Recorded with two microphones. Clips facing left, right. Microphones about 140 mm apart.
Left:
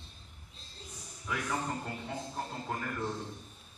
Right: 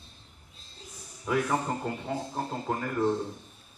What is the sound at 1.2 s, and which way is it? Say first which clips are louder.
A man's voice: right 7 dB; 40° right (ahead or behind).